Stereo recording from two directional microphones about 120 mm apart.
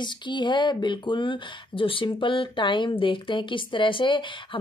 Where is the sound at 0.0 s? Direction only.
40° left (ahead or behind).